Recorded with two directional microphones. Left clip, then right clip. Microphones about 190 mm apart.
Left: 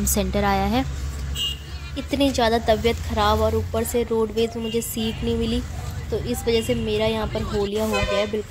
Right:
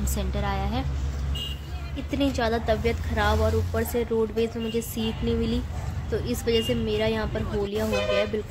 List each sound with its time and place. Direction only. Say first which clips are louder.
0.1 s a woman's voice: left 9 dB; 30° left (ahead or behind)
2.0 s a woman's voice: left 5 dB; 25° left (ahead or behind)